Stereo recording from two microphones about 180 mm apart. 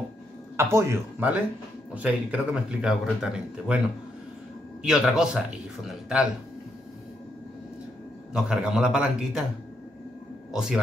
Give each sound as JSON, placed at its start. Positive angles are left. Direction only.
{"t": 0.6, "sound": "speech", "side_deg": -15}
{"t": 4.8, "sound": "speech", "side_deg": -5}
{"t": 8.3, "sound": "speech", "side_deg": -5}
{"t": 10.5, "sound": "a man's voice", "side_deg": -5}